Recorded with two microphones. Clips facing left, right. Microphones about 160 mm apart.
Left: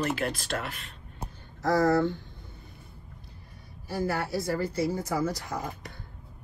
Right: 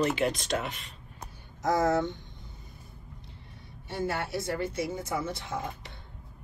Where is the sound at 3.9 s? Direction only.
25° right (ahead or behind).